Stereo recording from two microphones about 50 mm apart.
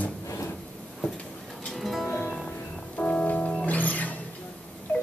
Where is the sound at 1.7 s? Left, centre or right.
Centre.